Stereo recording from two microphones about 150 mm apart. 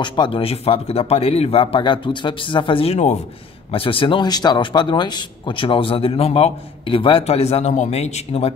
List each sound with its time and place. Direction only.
0.0 s speech: 30° left (ahead or behind)